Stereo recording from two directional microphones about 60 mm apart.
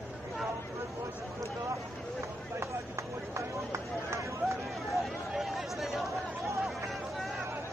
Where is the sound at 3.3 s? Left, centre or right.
Right.